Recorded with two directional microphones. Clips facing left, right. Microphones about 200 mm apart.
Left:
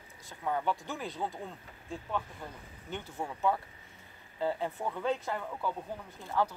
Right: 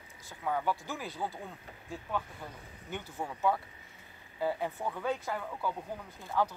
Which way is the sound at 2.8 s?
10° right (ahead or behind).